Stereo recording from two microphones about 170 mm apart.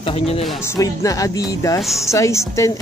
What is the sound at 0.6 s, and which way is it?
A woman's voice, 15° left (ahead or behind).